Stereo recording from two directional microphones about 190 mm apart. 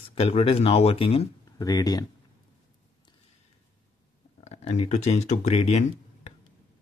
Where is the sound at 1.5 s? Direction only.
20° left (ahead or behind).